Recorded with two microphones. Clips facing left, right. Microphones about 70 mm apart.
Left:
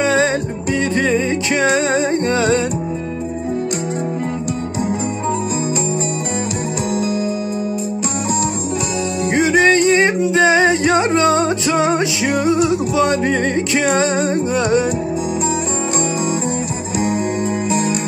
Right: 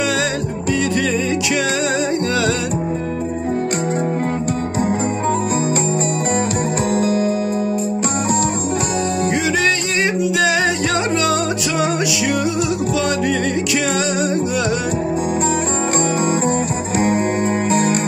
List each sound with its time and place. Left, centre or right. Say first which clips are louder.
0.0 s music: left 4 dB; left
7.0 s music: right 3 dB; right
9.3 s music: left 8 dB; left
17.6 s music: right 2 dB; right